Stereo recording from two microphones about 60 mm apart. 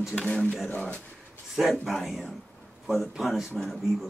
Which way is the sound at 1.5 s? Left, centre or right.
Centre.